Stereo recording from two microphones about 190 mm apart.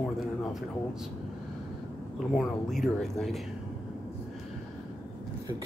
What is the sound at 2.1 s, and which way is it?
Speech, centre (ahead or behind).